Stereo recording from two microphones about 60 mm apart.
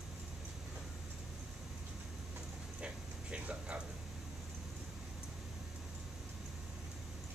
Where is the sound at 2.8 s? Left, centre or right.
Centre.